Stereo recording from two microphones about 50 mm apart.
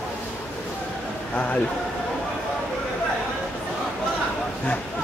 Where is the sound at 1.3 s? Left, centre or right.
Left.